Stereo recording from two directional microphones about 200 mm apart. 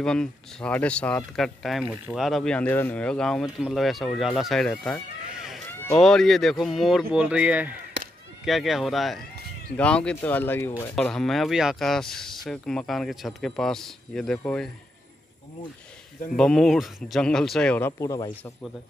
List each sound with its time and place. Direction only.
0.0 s speech: 5° left (ahead or behind)
8.0 s a sound: 60° right (ahead or behind)
8.5 s speech: centre (ahead or behind)
16.3 s speech: centre (ahead or behind)